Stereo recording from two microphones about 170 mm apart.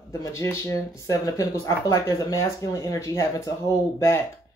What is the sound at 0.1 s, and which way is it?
Speech, 15° left (ahead or behind).